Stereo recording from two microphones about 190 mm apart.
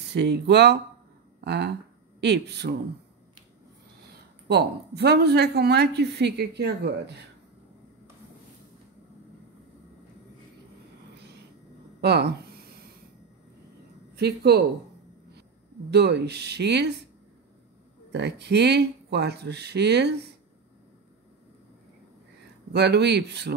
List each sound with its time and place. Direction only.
0.1 s a woman's voice: 60° right (ahead or behind)
4.5 s a woman's voice: 60° right (ahead or behind)
12.0 s a woman's voice: 60° right (ahead or behind)
14.1 s speech: 60° right (ahead or behind)
15.9 s a woman's voice: 60° right (ahead or behind)
18.1 s a woman's voice: 65° right (ahead or behind)
22.7 s a woman's voice: 60° right (ahead or behind)